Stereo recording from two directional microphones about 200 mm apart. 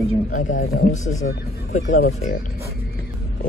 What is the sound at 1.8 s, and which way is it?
Speech, 55° left (ahead or behind).